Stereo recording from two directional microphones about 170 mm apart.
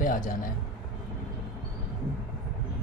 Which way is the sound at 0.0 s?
50° left (ahead or behind).